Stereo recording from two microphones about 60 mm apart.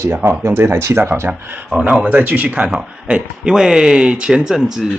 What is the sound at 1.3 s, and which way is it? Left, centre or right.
Speech, right.